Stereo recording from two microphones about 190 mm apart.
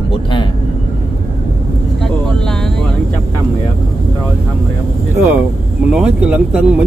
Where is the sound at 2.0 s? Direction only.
Centre (ahead or behind).